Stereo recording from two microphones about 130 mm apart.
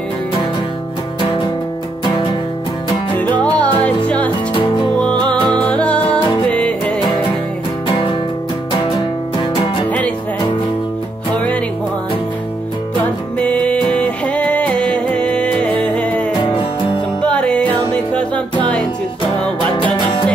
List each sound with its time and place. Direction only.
3.2 s music: 10° left (ahead or behind)
5.5 s music: 10° left (ahead or behind)
8.9 s music: 40° left (ahead or behind)
9.8 s music: 10° left (ahead or behind)
13.4 s music: 10° left (ahead or behind)
16.3 s music: 40° left (ahead or behind)
17.2 s music: 10° left (ahead or behind)
19.7 s music: 35° left (ahead or behind)